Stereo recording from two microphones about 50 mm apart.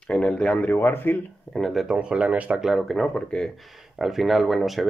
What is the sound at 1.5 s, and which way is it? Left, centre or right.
Speech, centre.